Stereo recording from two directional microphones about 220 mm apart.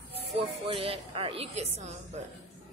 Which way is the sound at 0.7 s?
25° right (ahead or behind).